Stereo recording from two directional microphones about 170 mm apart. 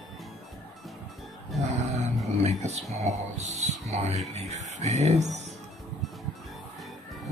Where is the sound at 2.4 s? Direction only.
40° right (ahead or behind).